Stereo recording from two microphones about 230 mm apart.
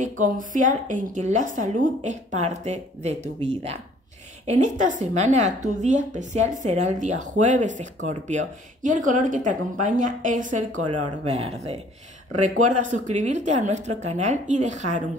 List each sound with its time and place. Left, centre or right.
0.2 s a woman's voice: right
4.5 s a woman's voice: right